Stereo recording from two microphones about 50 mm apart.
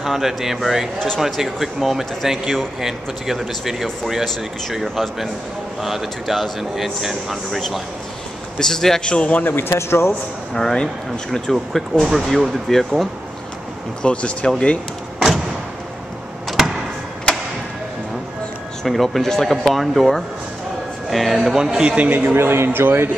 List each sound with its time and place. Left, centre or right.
0.0 s speech: centre
0.9 s a man's voice: centre
1.2 s speech: centre
8.5 s a man's voice: centre
9.0 s speech: centre
9.4 s speech: left
9.8 s speech: left
10.5 s a man's voice: centre
14.0 s speech: left
16.4 s a sound: centre
18.9 s speech: centre
21.6 s a man's voice: centre
22.3 s a man's voice: right